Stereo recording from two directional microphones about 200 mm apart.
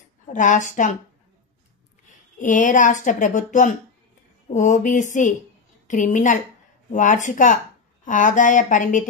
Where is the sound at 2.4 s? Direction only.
40° left (ahead or behind).